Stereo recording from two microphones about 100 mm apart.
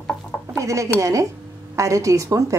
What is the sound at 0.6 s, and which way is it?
A woman's voice, 30° right (ahead or behind).